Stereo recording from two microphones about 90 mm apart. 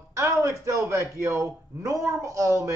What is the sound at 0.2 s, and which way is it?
A man's voice, 30° right (ahead or behind).